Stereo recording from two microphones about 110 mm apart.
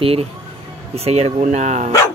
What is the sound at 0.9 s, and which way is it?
Speech, 70° right (ahead or behind).